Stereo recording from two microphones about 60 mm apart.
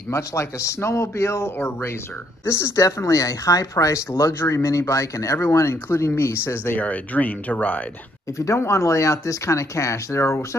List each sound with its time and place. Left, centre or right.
0.1 s speech: left
6.8 s speech: left
8.4 s speech: left